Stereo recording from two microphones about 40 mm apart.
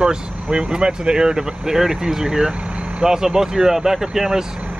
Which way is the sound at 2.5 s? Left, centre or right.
Right.